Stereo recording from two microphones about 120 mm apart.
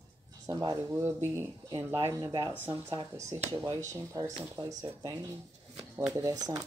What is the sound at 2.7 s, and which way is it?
Speech, 45° right (ahead or behind).